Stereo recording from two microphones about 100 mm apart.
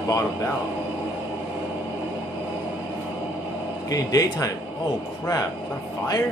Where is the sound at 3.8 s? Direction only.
35° left (ahead or behind).